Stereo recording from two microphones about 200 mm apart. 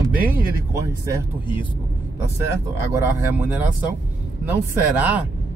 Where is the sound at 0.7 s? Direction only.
15° right (ahead or behind).